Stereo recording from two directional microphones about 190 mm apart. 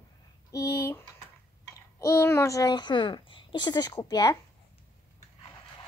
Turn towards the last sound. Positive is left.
turn(degrees=20)  # may be behind; listen again after turning